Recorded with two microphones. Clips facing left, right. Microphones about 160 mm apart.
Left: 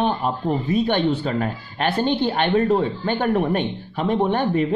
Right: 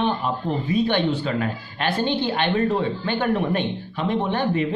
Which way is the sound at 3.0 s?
45° left (ahead or behind).